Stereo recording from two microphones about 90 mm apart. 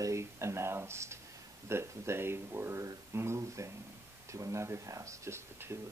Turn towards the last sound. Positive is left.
turn(degrees=-30)  # may be behind; listen again after turning